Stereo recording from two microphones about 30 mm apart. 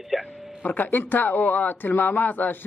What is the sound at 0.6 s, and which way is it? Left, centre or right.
Speech, left.